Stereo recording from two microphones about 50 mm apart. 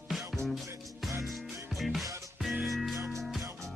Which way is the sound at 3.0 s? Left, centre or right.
Right.